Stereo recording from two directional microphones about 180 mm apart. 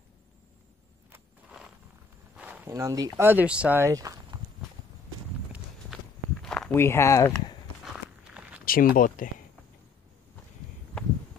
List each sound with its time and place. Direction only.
1.1 s walk: 5° right (ahead or behind)
2.3 s speech: 10° right (ahead or behind)
6.4 s speech: 5° left (ahead or behind)
7.8 s walk: 5° right (ahead or behind)
8.6 s speech: 50° left (ahead or behind)